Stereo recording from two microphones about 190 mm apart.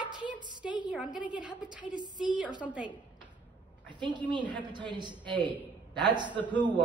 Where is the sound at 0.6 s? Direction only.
5° right (ahead or behind).